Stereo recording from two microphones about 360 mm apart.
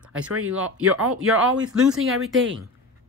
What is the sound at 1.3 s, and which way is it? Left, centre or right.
Speech, right.